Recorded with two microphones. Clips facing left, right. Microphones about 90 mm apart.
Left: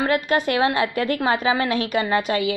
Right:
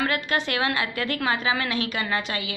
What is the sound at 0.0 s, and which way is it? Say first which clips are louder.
A woman's voice: left 5 dB; 40° left (ahead or behind).